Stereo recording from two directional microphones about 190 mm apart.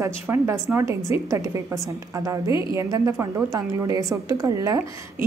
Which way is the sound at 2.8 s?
15° right (ahead or behind).